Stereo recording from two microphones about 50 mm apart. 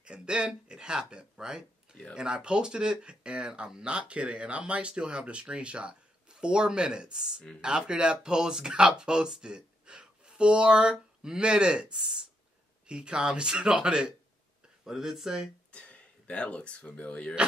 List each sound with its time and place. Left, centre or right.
0.0 s speech: centre
14.9 s speech: centre
15.7 s speech: left